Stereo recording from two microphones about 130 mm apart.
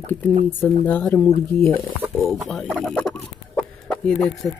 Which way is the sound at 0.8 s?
10° left (ahead or behind).